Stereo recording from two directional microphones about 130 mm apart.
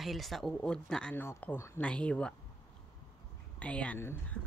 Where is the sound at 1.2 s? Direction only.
20° left (ahead or behind).